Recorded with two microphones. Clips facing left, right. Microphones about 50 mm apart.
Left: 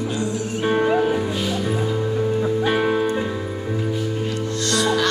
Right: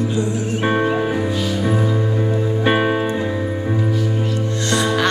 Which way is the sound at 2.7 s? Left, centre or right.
Right.